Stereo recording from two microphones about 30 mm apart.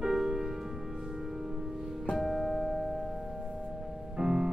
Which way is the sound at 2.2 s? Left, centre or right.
Centre.